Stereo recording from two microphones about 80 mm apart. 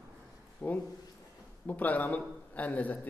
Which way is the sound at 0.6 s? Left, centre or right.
Centre.